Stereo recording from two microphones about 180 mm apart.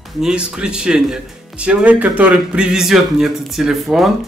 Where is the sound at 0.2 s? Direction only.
5° right (ahead or behind).